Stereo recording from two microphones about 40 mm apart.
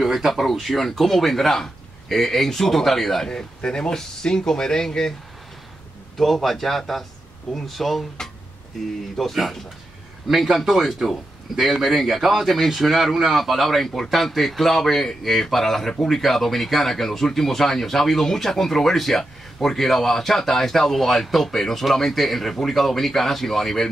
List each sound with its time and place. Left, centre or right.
0.0 s a man's voice: centre
3.3 s speech: centre
6.1 s a man's voice: centre
9.3 s a man's voice: centre